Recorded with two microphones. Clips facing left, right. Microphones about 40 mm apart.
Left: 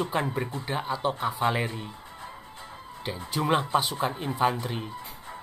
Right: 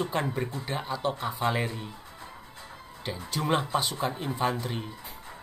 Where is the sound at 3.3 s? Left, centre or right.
Centre.